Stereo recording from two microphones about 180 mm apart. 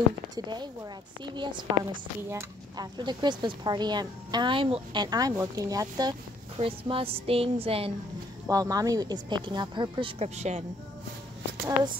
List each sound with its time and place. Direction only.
1.2 s speech: 25° right (ahead or behind)
8.5 s speech: 20° right (ahead or behind); by 10.6 s 40° right (ahead or behind)